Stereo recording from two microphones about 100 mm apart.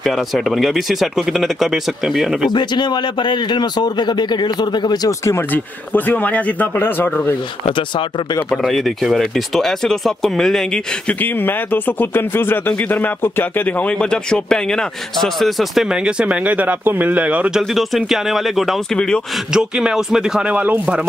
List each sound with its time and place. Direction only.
0.0 s speech: centre (ahead or behind)
2.5 s speech: 50° left (ahead or behind)
5.2 s speech: 25° left (ahead or behind)
7.6 s speech: 55° left (ahead or behind)
8.5 s speech: centre (ahead or behind)
19.5 s speech: 5° right (ahead or behind)